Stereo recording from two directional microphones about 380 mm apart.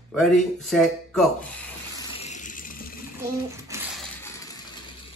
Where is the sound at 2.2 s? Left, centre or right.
Centre.